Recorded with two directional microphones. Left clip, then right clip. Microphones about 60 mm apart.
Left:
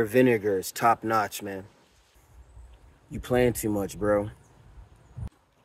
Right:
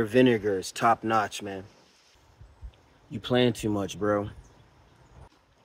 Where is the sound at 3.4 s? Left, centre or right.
Right.